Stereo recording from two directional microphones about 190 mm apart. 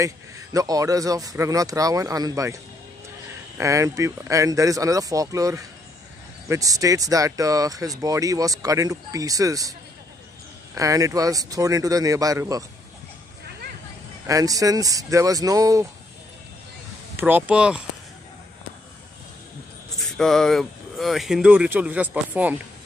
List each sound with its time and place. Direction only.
0.0 s speech: 15° right (ahead or behind)
14.2 s speech: 20° right (ahead or behind)
17.2 s speech: 10° right (ahead or behind)
20.0 s speech: centre (ahead or behind)